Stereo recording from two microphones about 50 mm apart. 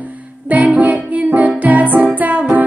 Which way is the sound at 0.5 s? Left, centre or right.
Right.